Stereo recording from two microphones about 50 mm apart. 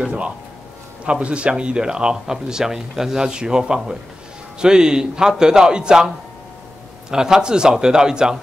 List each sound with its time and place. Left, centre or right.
1.0 s speech: right